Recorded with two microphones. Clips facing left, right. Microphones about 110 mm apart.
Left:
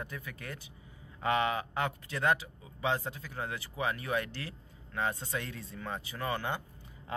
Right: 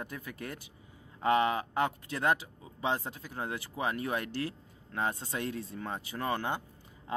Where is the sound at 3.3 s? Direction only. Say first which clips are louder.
Right 3 dB; 40° right (ahead or behind).